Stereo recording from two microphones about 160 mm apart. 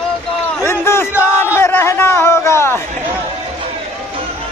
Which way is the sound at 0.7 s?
15° left (ahead or behind).